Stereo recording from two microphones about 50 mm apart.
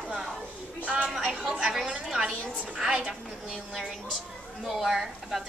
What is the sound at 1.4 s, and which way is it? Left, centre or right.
A woman's voice, centre.